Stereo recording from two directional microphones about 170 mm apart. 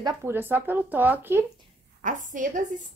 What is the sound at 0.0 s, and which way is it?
Speech, 15° right (ahead or behind).